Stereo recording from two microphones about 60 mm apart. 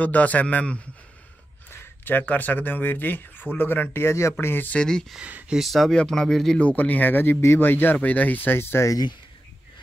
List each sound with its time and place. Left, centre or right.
0.0 s a man's voice: left
4.7 s speech: centre
5.5 s speech: centre
6.6 s speech: left